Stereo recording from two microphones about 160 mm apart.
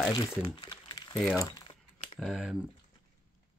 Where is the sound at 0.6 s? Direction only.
25° left (ahead or behind).